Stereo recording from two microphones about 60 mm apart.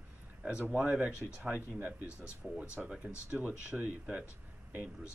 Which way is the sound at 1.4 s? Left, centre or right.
Right.